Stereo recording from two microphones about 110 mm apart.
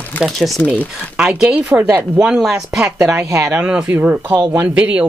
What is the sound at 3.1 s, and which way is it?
Speech, 20° right (ahead or behind).